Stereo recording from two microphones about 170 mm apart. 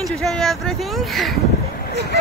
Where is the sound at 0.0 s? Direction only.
Centre (ahead or behind).